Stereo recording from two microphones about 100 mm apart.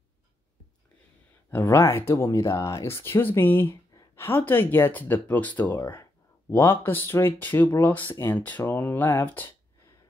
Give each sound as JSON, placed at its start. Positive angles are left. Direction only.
{"t": 1.5, "sound": "speech", "side_deg": 25}
{"t": 5.8, "sound": "speech", "side_deg": 25}